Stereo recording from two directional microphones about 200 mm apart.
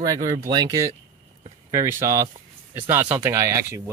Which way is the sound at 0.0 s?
20° right (ahead or behind).